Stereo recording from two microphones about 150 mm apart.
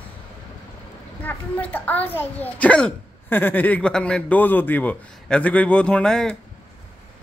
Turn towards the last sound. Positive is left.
turn(degrees=5)  # may be behind; listen again after turning